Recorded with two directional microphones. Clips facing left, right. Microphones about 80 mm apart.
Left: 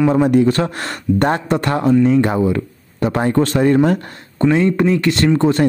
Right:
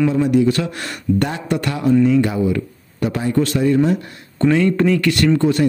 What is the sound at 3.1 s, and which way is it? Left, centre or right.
Speech, left.